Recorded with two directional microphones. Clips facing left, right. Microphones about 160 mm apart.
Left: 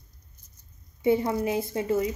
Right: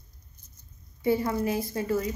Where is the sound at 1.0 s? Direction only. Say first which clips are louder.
Left 2 dB; 20° left (ahead or behind).